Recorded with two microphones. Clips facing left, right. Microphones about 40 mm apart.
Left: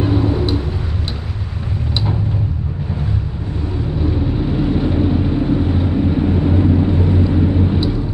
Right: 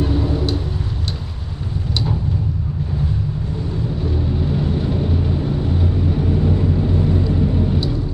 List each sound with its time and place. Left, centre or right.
0.0 s vehicle: centre
4.0 s vehicle: centre